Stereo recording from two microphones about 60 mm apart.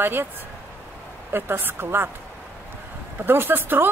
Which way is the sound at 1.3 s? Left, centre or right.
Right.